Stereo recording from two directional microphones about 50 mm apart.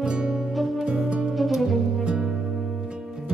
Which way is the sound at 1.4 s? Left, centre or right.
Centre.